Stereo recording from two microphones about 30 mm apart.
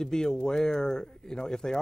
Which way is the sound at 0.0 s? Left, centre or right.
Left.